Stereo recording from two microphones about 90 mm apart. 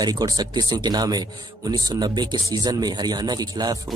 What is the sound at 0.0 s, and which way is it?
Speech, 50° right (ahead or behind).